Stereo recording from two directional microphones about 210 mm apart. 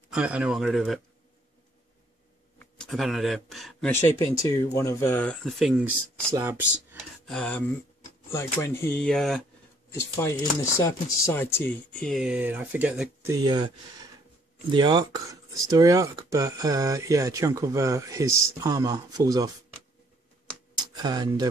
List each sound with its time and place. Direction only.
0.1 s speech: 5° right (ahead or behind)
2.8 s speech: centre (ahead or behind)
3.9 s speech: 15° left (ahead or behind); by 7.0 s 10° right (ahead or behind)
7.2 s speech: 5° left (ahead or behind)
10.8 s speech: 15° left (ahead or behind); by 13.3 s 5° right (ahead or behind)
13.3 s speech: 20° right (ahead or behind)
14.7 s speech: 20° right (ahead or behind)
20.7 s tick: 20° right (ahead or behind)